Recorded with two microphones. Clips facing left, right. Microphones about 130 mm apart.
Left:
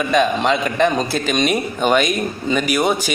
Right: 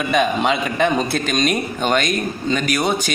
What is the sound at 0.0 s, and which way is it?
Speech, 5° right (ahead or behind).